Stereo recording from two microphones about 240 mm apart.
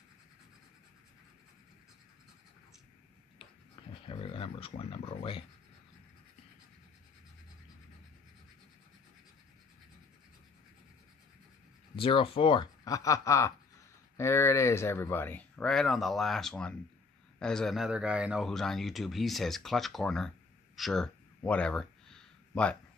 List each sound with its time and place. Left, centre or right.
3.8 s pig: left
4.1 s a sound: left
11.9 s speech: left; by 22.8 s centre